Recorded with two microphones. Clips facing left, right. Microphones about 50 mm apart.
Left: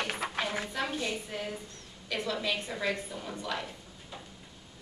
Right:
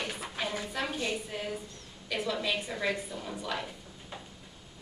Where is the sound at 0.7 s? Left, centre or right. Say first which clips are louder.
Left 1 dB; centre.